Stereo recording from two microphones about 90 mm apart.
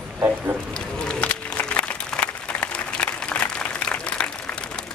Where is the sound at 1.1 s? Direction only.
15° left (ahead or behind).